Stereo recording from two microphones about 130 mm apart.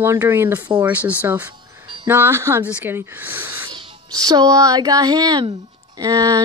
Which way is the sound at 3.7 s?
30° right (ahead or behind).